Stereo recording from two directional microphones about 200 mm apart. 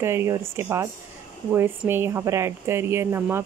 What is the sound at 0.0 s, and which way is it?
Speech, 10° right (ahead or behind).